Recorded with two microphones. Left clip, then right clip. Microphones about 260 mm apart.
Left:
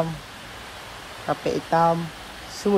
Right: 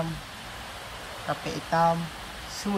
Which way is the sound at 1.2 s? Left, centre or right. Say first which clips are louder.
Left 7 dB; centre.